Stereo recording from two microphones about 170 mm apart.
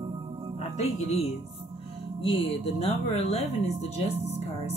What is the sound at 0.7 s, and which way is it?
Speech, 40° left (ahead or behind).